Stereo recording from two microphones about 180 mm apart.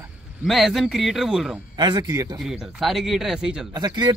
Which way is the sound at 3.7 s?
25° right (ahead or behind).